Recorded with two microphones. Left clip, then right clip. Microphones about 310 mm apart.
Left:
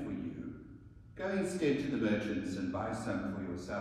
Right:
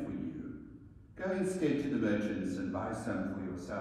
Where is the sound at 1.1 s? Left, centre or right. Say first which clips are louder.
Right 1 dB; centre.